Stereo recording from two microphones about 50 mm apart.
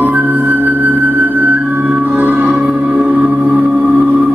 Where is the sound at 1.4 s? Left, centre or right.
Right.